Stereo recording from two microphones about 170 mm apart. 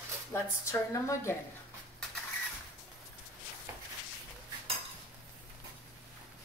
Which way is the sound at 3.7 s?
15° right (ahead or behind).